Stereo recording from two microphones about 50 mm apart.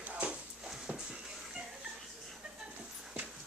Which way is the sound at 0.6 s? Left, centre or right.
Centre.